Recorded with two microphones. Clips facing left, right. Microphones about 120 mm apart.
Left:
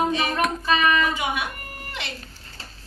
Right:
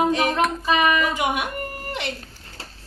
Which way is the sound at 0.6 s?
15° right (ahead or behind).